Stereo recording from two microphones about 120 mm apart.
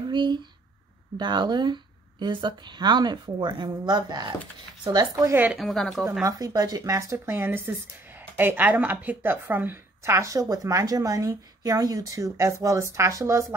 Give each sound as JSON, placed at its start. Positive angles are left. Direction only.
{"t": 0.1, "sound": "speech", "side_deg": -40}
{"t": 5.5, "sound": "speech", "side_deg": 0}
{"t": 6.2, "sound": "speech", "side_deg": -30}